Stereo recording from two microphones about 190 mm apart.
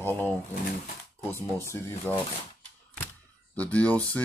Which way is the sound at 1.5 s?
10° left (ahead or behind).